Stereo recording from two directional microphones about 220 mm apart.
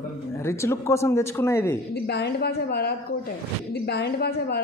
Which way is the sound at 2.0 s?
50° left (ahead or behind).